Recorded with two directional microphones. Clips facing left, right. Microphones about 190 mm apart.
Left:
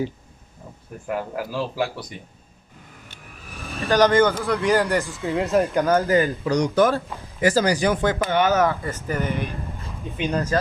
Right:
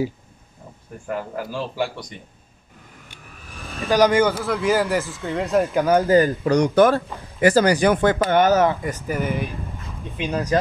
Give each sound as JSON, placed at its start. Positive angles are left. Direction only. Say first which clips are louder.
{"t": 1.0, "sound": "speech", "louder": "left 1 dB", "side_deg": 5}
{"t": 3.8, "sound": "speech", "louder": "even", "side_deg": -10}
{"t": 6.0, "sound": "speech", "louder": "right 3 dB", "side_deg": -35}
{"t": 6.4, "sound": "speech", "louder": "right 3 dB", "side_deg": -55}
{"t": 8.3, "sound": "speech", "louder": "right 3 dB", "side_deg": -45}
{"t": 8.5, "sound": "speech", "louder": "right 2 dB", "side_deg": -15}